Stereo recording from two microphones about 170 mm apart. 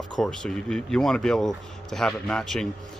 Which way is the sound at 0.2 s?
5° left (ahead or behind).